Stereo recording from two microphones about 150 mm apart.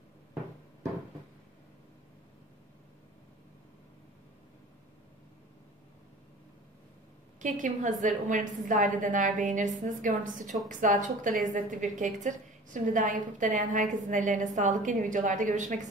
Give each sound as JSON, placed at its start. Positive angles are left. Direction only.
{"t": 7.3, "sound": "a woman's voice", "side_deg": -55}